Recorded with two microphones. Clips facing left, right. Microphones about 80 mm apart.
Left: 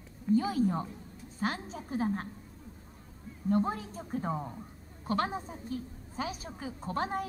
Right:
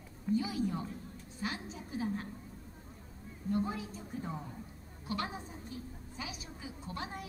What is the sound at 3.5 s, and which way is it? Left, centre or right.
A woman's voice, left.